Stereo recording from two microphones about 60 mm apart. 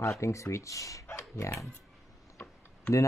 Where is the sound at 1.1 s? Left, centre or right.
Left.